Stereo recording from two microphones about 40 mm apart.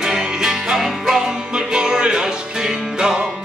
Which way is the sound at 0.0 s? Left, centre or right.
Centre.